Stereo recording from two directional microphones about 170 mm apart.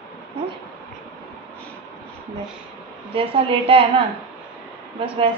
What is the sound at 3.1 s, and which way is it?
Speech, 35° right (ahead or behind).